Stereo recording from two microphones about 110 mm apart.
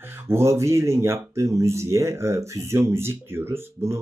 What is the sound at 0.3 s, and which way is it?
Speech, 25° right (ahead or behind).